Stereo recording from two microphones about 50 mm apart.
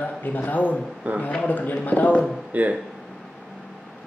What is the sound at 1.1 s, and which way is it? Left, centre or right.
Speech, right.